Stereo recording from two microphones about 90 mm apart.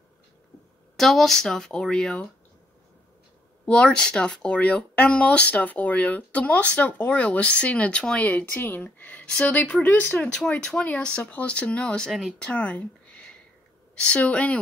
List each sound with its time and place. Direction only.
0.9 s speech: 5° left (ahead or behind)
3.6 s speech: 10° left (ahead or behind)
10.1 s speech: 10° left (ahead or behind)